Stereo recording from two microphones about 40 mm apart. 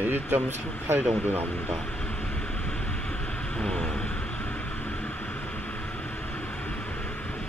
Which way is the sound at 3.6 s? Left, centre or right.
Centre.